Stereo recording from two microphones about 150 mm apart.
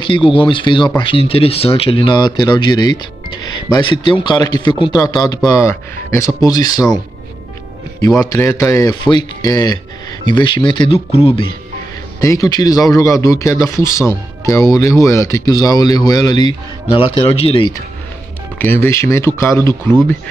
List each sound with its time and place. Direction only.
0.0 s speech: 35° left (ahead or behind)
8.2 s speech: 20° left (ahead or behind); by 11.4 s 40° left (ahead or behind)
12.2 s speech: 20° left (ahead or behind)
18.6 s speech: 15° left (ahead or behind)